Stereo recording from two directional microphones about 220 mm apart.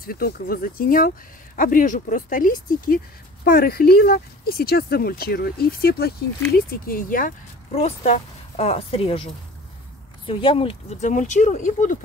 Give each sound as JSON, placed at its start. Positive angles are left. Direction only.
{"t": 0.0, "sound": "speech", "side_deg": 45}
{"t": 10.2, "sound": "speech", "side_deg": 25}